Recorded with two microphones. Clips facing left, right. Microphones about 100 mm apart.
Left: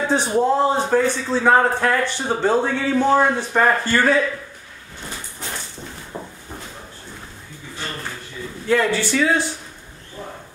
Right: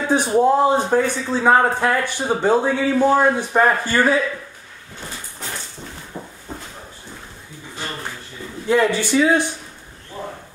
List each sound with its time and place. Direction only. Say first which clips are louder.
0.1 s a man's voice: right 4 dB; 15° right (ahead or behind)
6.1 s a sound: left 2 dB; 15° left (ahead or behind)
8.6 s a man's voice: right 1 dB; 15° right (ahead or behind)